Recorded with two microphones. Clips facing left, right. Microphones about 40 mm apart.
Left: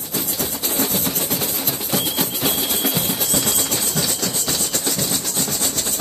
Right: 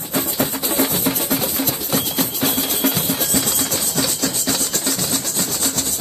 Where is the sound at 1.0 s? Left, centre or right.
Centre.